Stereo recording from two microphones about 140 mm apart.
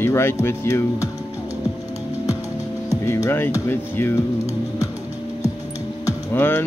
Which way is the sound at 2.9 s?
20° left (ahead or behind).